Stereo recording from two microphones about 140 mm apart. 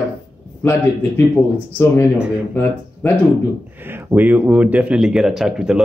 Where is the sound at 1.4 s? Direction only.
20° left (ahead or behind).